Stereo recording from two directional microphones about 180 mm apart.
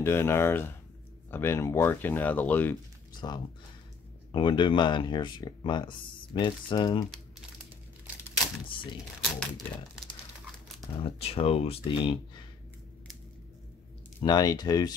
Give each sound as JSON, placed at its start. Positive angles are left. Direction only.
{"t": 0.0, "sound": "speech", "side_deg": 15}
{"t": 3.2, "sound": "speech", "side_deg": 25}
{"t": 9.3, "sound": "speech", "side_deg": 0}
{"t": 11.0, "sound": "speech", "side_deg": 30}
{"t": 14.2, "sound": "speech", "side_deg": 20}